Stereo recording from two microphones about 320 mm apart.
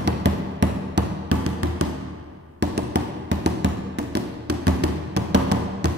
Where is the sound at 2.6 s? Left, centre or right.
Right.